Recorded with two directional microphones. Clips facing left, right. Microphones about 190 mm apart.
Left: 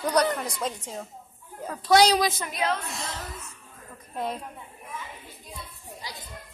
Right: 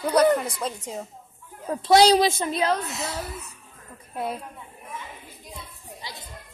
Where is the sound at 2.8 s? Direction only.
5° right (ahead or behind).